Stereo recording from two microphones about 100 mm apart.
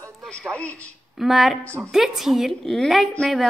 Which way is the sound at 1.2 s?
Centre (ahead or behind).